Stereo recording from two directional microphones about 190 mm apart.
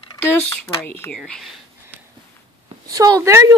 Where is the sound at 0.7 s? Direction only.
15° left (ahead or behind).